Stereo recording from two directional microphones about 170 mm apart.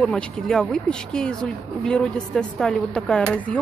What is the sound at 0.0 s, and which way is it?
Speech, 5° left (ahead or behind).